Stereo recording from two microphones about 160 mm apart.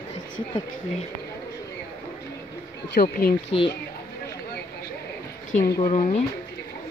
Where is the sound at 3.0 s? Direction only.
70° left (ahead or behind).